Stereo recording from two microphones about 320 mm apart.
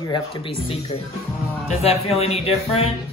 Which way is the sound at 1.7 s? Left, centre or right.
Centre.